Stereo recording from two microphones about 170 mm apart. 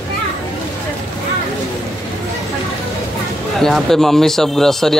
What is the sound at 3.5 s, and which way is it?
Speech, centre (ahead or behind).